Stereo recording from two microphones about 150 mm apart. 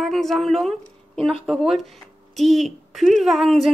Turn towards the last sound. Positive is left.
turn(degrees=0)  # may be behind; listen again after turning